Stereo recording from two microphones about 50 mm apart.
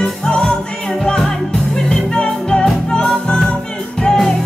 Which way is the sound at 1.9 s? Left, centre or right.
Centre.